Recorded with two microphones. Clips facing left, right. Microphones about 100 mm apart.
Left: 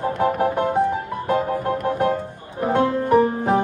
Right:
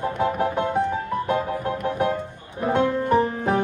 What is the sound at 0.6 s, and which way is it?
Music, 15° left (ahead or behind).